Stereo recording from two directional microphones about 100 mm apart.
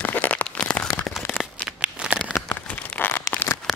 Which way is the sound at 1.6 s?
10° right (ahead or behind).